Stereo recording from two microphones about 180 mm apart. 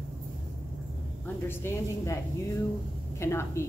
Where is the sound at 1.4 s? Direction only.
15° left (ahead or behind).